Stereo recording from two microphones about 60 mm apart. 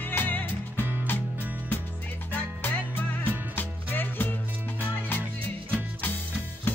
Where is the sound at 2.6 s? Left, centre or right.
Left.